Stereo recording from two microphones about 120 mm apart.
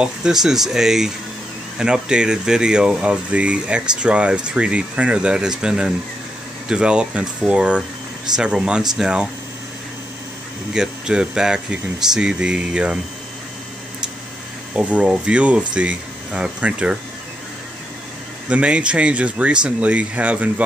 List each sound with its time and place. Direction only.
0.0 s speech: 5° right (ahead or behind)
10.7 s speech: 5° right (ahead or behind)
14.8 s speech: 10° right (ahead or behind)
18.5 s speech: 10° right (ahead or behind)